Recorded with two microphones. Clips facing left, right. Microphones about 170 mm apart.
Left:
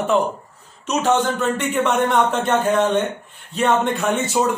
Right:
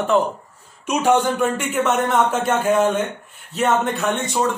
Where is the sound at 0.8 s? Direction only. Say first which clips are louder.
Right 1 dB; 10° right (ahead or behind).